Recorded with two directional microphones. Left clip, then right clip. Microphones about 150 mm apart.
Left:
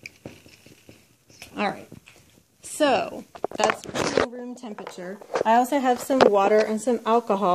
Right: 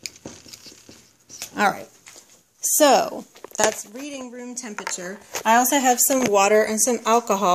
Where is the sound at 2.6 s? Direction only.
45° right (ahead or behind).